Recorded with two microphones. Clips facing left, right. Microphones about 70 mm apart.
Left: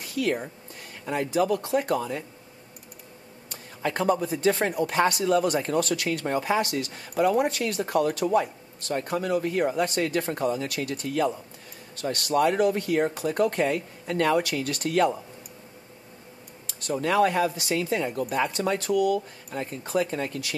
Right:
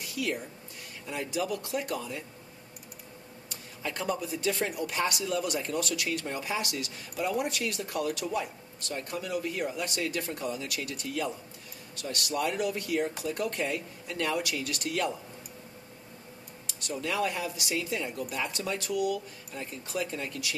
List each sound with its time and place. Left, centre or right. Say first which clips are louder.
0.0 s speech: left 6 dB; left
3.4 s speech: left 8 dB; left
16.8 s speech: left 8 dB; left